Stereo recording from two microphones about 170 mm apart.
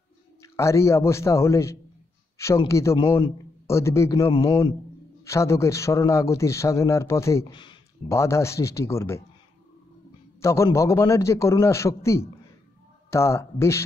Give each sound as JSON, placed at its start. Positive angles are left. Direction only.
{"t": 0.4, "sound": "a man's voice", "side_deg": 15}
{"t": 2.3, "sound": "a sound", "side_deg": 15}
{"t": 2.7, "sound": "a man's voice", "side_deg": 15}
{"t": 3.0, "sound": "a man's voice", "side_deg": 30}
{"t": 3.6, "sound": "a man's voice", "side_deg": 15}
{"t": 7.5, "sound": "speech", "side_deg": 30}
{"t": 8.1, "sound": "a man's voice", "side_deg": 15}
{"t": 10.4, "sound": "a man's voice", "side_deg": 15}